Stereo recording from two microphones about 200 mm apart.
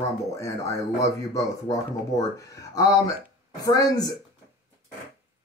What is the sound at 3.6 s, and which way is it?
Speech, 20° left (ahead or behind).